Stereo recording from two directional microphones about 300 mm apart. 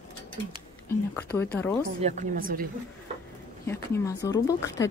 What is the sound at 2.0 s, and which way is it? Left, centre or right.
Speech, right.